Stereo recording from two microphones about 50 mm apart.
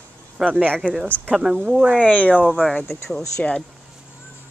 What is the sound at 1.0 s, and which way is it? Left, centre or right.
Speech, left.